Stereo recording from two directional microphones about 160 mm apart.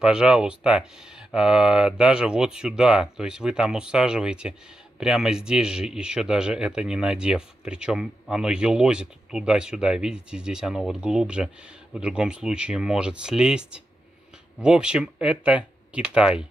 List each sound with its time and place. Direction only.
0.0 s speech: 5° right (ahead or behind)